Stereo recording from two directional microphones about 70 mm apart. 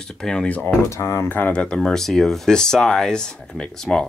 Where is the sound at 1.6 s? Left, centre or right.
Centre.